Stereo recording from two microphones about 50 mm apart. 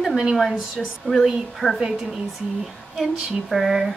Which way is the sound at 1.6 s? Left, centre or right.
Left.